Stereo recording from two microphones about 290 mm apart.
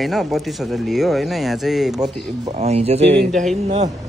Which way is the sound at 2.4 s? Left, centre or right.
Right.